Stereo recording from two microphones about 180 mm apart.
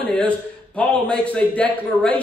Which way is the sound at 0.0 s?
5° left (ahead or behind).